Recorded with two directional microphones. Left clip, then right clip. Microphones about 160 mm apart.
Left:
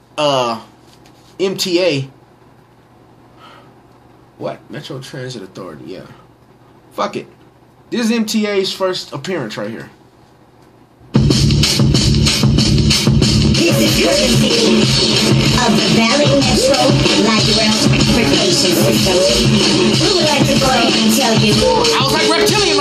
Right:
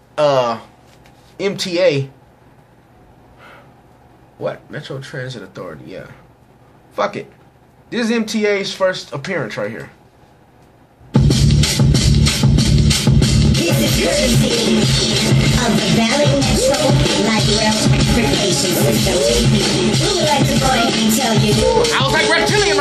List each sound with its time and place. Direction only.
0.1 s speech: 5° left (ahead or behind)
4.4 s speech: 5° left (ahead or behind)
7.9 s speech: 10° left (ahead or behind)
11.1 s music: centre (ahead or behind)